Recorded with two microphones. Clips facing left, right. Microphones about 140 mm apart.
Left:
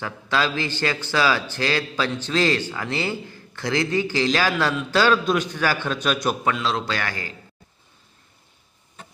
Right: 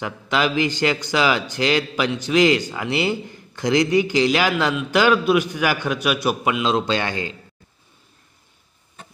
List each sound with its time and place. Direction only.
0.0 s a man's voice: 15° right (ahead or behind)